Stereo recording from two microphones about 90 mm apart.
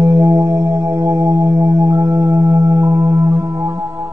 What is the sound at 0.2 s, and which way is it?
Music, 40° right (ahead or behind).